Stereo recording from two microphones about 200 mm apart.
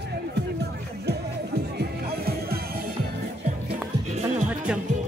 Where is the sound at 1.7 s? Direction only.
50° right (ahead or behind).